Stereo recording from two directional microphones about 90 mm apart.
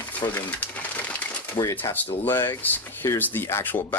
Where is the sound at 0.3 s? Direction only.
20° left (ahead or behind).